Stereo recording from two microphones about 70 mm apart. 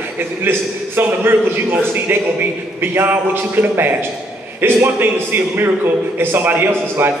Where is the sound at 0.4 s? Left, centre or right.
Right.